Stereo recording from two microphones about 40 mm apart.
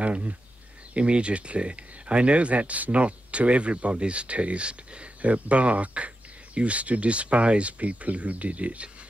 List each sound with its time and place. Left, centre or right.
0.0 s speech: right